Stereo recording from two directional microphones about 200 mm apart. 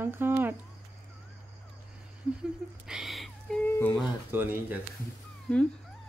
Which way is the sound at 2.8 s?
Centre (ahead or behind).